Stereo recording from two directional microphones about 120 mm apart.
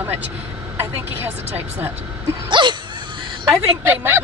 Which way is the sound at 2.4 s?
40° right (ahead or behind).